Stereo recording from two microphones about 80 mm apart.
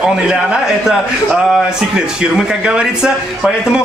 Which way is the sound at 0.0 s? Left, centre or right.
Centre.